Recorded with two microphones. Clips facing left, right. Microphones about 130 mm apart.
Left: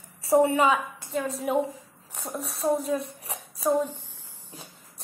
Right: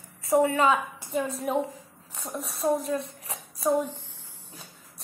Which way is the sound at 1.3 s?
Centre (ahead or behind).